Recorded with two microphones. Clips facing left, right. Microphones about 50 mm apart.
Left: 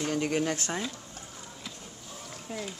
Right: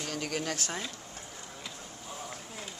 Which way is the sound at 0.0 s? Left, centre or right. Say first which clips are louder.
Left 6 dB; left.